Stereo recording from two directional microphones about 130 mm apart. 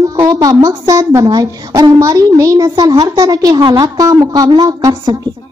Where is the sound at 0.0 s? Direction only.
25° right (ahead or behind).